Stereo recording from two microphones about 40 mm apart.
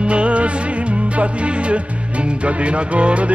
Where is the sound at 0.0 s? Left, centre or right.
Right.